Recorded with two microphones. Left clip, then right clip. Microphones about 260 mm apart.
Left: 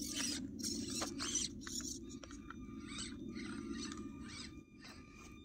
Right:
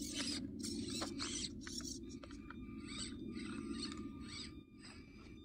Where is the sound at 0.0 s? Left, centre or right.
Centre.